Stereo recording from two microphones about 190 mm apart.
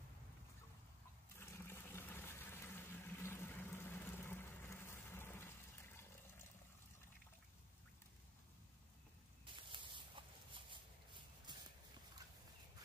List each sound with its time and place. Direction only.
1.4 s water: 15° left (ahead or behind)
9.5 s a sound: 25° right (ahead or behind)
11.5 s walk: 25° right (ahead or behind)